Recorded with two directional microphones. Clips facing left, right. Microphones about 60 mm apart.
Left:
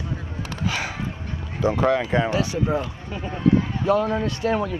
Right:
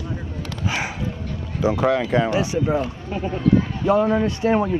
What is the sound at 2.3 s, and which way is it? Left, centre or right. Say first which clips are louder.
A man's voice: right 2 dB; right.